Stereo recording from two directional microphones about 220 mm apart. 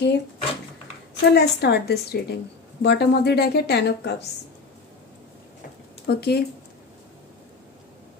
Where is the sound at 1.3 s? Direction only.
45° left (ahead or behind).